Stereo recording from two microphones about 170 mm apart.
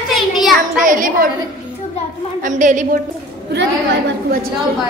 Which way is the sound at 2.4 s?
50° right (ahead or behind).